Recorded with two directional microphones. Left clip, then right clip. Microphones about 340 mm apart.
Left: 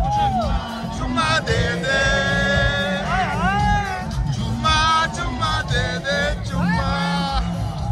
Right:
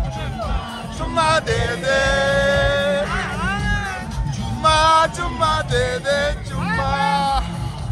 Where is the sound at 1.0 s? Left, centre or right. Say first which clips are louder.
Right 3 dB; centre.